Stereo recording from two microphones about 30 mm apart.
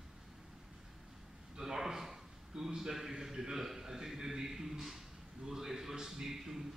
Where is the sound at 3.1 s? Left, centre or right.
Centre.